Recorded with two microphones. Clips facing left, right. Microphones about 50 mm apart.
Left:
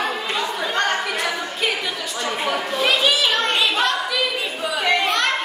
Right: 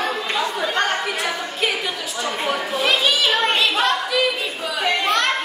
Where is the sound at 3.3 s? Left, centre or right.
Centre.